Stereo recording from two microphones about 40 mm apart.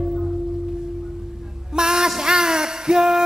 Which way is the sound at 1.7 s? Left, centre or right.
Centre.